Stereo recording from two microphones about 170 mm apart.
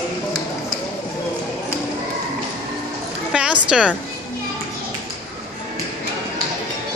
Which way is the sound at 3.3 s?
5° right (ahead or behind).